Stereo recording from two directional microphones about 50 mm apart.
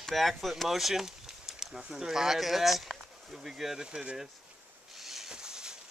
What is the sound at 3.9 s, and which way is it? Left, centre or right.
Speech, centre.